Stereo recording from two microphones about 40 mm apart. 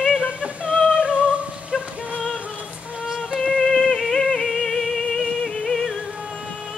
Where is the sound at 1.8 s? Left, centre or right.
Right.